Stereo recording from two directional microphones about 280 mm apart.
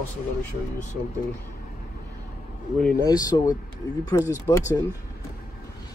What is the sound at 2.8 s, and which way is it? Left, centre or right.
Speech, centre.